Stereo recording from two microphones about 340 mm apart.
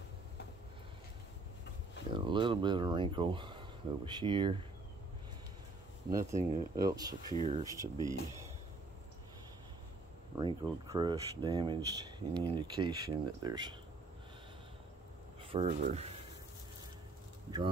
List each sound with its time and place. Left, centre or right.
2.1 s speech: centre
6.0 s speech: centre
10.3 s speech: centre
15.5 s speech: centre
17.5 s speech: centre